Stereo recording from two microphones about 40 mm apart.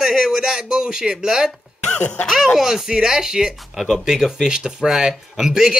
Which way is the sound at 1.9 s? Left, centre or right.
Left.